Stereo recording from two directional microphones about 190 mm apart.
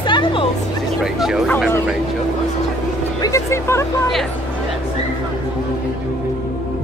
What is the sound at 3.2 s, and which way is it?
Speech, 15° left (ahead or behind).